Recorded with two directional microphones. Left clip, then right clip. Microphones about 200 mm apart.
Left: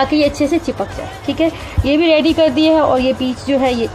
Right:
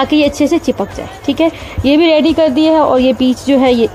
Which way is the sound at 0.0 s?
45° right (ahead or behind).